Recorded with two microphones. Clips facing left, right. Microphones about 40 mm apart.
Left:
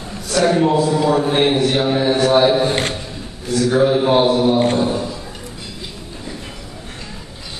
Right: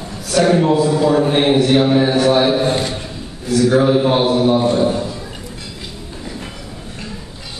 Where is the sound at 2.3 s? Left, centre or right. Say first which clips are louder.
Left 3 dB; centre.